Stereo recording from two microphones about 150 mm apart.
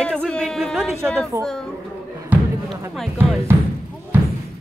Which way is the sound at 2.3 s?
10° right (ahead or behind).